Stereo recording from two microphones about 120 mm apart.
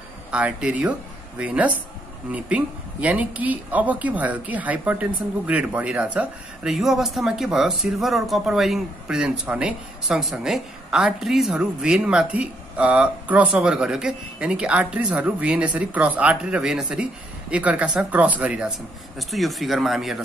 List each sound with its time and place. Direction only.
0.3 s speech: 10° right (ahead or behind)